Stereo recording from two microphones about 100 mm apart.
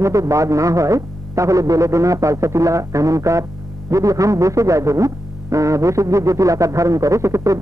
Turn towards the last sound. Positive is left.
turn(degrees=-30)  # may be behind; listen again after turning